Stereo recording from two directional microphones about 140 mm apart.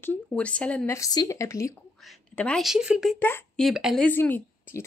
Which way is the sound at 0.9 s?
25° left (ahead or behind).